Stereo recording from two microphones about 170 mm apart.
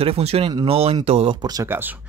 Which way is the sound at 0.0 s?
35° right (ahead or behind).